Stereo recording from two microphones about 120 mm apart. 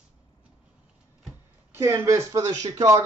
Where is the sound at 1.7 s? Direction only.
20° right (ahead or behind).